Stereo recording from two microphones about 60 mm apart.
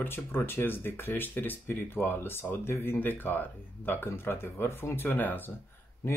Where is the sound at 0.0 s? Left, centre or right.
Left.